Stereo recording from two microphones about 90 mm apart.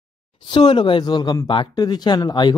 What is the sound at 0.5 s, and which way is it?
Speech, 60° left (ahead or behind).